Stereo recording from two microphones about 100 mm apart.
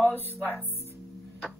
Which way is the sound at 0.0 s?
20° left (ahead or behind).